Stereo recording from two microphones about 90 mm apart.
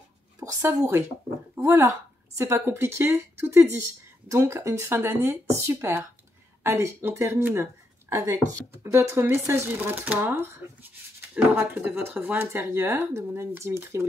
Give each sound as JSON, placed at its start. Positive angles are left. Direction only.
{"t": 0.4, "sound": "a woman's voice", "side_deg": -35}